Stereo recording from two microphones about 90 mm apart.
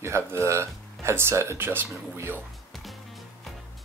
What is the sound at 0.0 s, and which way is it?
Speech, 30° right (ahead or behind).